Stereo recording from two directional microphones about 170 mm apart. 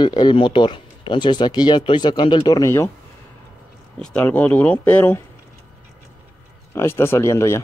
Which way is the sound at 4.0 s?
5° left (ahead or behind).